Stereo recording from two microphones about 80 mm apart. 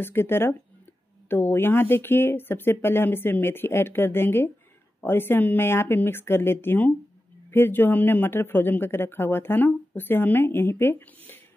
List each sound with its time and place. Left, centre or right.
0.0 s speech: left